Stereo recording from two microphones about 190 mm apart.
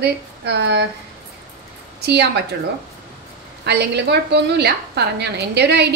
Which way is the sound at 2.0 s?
60° right (ahead or behind).